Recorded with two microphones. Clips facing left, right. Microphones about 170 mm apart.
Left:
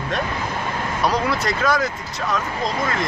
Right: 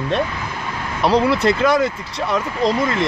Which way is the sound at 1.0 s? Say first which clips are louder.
Right 7 dB; 30° right (ahead or behind).